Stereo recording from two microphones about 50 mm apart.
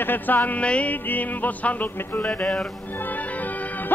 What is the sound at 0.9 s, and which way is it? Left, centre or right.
A man's voice, left.